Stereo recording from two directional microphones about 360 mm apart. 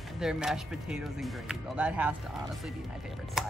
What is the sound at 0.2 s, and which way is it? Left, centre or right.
Speech, centre.